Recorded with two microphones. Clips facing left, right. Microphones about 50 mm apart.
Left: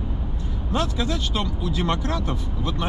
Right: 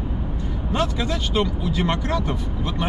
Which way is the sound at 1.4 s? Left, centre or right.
Right.